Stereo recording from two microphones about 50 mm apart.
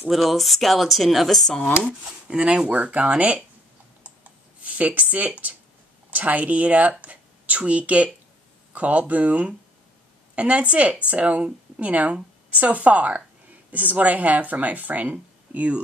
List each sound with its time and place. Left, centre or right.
0.1 s speech: centre
2.2 s speech: right
4.0 s computer keyboard: right
6.0 s speech: right